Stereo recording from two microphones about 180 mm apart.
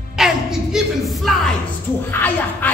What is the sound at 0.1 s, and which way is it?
Music, 5° right (ahead or behind).